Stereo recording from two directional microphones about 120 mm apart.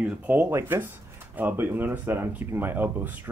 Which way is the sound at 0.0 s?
15° right (ahead or behind).